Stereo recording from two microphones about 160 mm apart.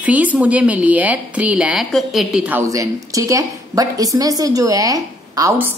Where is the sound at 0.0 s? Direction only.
10° right (ahead or behind).